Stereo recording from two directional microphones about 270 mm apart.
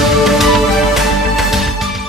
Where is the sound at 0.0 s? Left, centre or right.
Centre.